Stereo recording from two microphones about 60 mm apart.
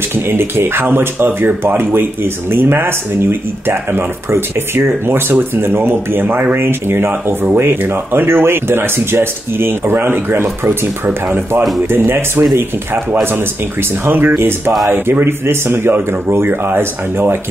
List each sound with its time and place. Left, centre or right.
0.1 s speech: right